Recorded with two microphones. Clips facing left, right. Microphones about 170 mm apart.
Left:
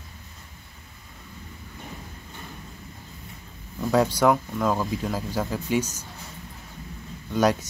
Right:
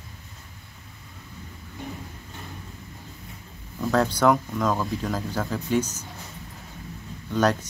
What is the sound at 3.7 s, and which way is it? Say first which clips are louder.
Speech: left 1 dB; 10° left (ahead or behind).